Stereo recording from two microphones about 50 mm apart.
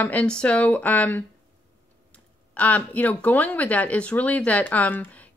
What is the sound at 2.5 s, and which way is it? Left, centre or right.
Speech, left.